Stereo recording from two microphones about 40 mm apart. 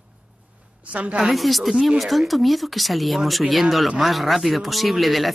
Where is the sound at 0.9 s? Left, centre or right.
Right.